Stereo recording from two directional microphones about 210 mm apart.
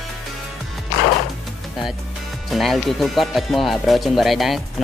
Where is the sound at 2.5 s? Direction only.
Centre (ahead or behind).